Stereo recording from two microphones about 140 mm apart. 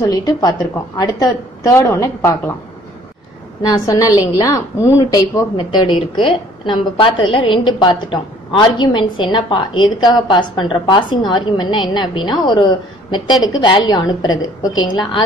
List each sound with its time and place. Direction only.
0.0 s a woman's voice: 30° left (ahead or behind)
3.6 s a woman's voice: 25° left (ahead or behind)